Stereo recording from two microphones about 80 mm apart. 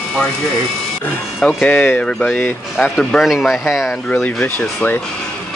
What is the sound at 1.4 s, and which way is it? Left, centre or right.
Speech, centre.